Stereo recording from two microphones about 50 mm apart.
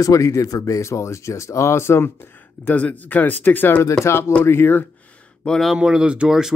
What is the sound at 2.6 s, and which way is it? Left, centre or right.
Speech, left.